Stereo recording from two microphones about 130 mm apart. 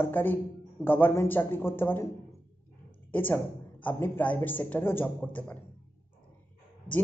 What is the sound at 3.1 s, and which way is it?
Speech, 15° left (ahead or behind).